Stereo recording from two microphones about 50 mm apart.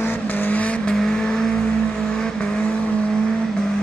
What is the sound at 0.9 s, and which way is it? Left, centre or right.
Vehicle, centre.